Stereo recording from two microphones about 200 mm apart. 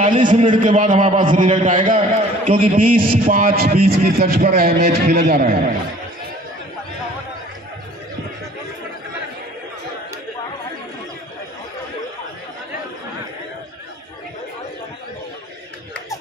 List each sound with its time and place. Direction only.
0.0 s a man's voice: 40° right (ahead or behind)